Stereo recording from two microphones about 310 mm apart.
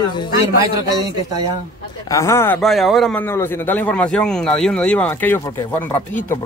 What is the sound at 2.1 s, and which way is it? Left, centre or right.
A man's voice, centre.